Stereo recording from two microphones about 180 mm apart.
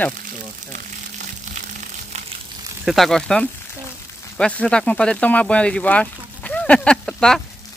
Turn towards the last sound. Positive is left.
turn(degrees=5)  # may be behind; listen again after turning